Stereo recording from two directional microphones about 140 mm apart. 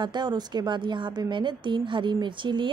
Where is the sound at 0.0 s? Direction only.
30° right (ahead or behind).